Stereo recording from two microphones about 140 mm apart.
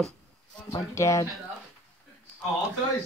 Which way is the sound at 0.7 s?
25° left (ahead or behind).